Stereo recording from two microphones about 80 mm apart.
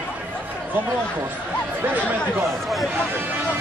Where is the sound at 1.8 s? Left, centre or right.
Right.